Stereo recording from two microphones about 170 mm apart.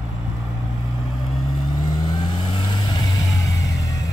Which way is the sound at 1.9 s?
25° left (ahead or behind).